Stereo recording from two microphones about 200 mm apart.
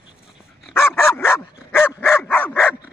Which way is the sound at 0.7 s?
10° left (ahead or behind).